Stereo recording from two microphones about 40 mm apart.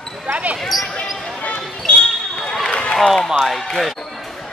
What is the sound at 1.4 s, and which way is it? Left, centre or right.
Basketball bounce, left.